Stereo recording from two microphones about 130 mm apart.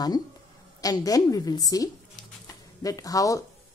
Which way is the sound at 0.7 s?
30° left (ahead or behind).